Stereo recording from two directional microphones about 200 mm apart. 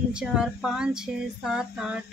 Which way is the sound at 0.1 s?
5° right (ahead or behind).